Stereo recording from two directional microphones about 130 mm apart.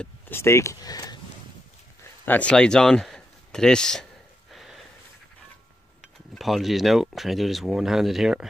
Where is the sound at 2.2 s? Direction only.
10° left (ahead or behind).